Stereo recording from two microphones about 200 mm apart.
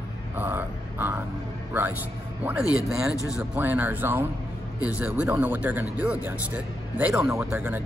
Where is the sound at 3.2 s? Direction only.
5° right (ahead or behind).